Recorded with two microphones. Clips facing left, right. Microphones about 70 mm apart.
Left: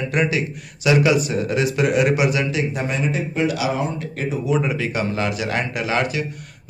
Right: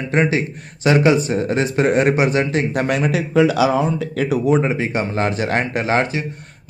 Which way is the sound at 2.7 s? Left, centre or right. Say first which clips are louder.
Right 5 dB; right.